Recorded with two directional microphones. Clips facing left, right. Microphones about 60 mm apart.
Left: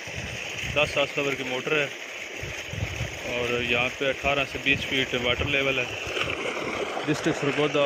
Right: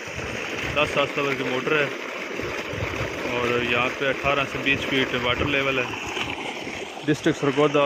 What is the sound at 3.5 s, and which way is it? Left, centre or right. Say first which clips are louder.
Speech: right 3 dB; centre.